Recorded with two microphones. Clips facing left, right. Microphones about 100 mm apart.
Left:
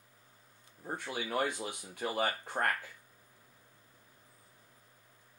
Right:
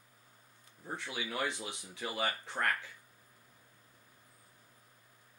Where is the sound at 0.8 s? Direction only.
50° left (ahead or behind).